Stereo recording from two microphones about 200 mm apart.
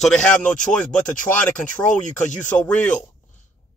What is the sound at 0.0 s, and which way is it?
Speech, 5° left (ahead or behind).